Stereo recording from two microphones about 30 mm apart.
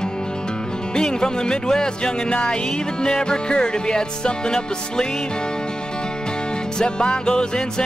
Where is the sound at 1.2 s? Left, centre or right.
Left.